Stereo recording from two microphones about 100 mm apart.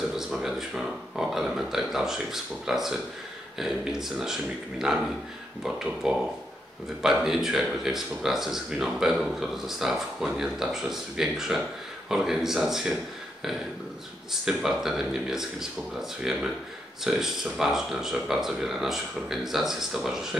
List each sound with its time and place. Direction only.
0.3 s speech: 5° right (ahead or behind)
6.0 s speech: 5° right (ahead or behind)
14.4 s speech: 5° right (ahead or behind)